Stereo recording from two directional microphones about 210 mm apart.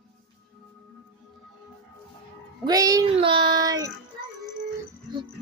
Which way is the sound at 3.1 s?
25° right (ahead or behind).